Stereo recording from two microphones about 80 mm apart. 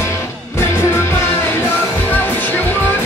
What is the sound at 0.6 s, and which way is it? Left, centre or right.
Music, left.